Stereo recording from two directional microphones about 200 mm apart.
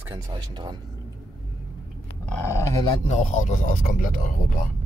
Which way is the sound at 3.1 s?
35° left (ahead or behind).